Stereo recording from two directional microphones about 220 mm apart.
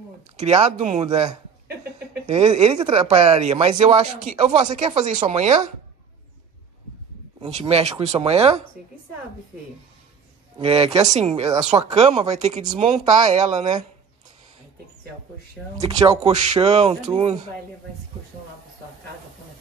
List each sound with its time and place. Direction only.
0.4 s speech: 30° right (ahead or behind)
7.4 s speech: 30° right (ahead or behind)
10.6 s speech: 25° right (ahead or behind)
13.3 s speech: 30° right (ahead or behind)
16.6 s speech: 30° right (ahead or behind)